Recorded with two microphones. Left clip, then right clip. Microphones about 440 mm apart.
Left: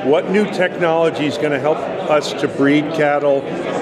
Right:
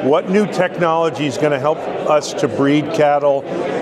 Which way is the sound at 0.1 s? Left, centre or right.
Right.